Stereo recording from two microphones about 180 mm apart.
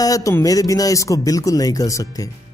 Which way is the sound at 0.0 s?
20° left (ahead or behind).